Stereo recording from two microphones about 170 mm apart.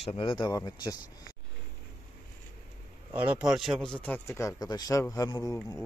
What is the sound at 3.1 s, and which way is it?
Speech, 10° right (ahead or behind).